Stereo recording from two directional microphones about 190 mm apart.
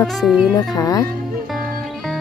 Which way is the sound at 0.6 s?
20° left (ahead or behind).